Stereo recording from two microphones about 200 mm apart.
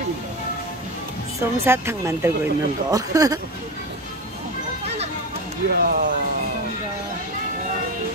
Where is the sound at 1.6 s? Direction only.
10° right (ahead or behind).